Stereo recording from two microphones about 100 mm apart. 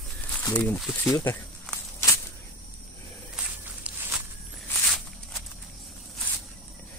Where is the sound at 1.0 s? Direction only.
20° left (ahead or behind).